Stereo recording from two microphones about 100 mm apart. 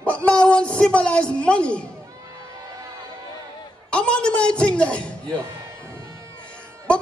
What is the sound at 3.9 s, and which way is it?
A man's voice, 10° left (ahead or behind).